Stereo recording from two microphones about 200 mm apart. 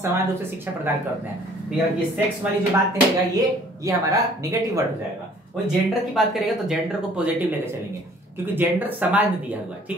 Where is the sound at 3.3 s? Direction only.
15° right (ahead or behind).